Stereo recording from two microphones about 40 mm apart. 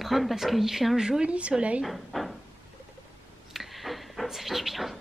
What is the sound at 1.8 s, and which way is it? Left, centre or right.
Speech, centre.